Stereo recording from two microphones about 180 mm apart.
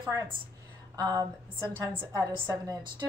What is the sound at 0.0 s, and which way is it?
A woman's voice, 15° right (ahead or behind).